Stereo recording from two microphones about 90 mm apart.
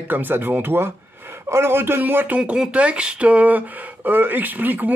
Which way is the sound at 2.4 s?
10° right (ahead or behind).